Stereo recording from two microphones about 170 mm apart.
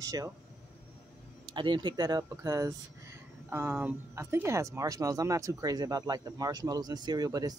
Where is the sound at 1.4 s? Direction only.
30° right (ahead or behind).